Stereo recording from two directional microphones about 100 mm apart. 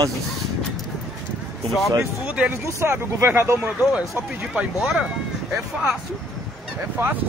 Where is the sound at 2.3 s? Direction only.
10° right (ahead or behind).